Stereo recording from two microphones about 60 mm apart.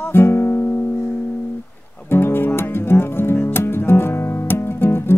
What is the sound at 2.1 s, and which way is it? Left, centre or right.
Music, left.